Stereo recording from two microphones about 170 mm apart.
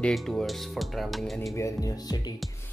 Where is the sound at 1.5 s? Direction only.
20° left (ahead or behind).